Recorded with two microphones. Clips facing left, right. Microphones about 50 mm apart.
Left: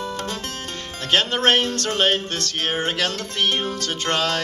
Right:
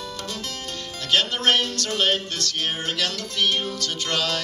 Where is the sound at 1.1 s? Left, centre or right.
Left.